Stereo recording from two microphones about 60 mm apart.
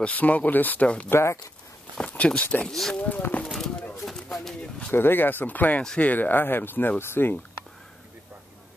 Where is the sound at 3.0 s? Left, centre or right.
Left.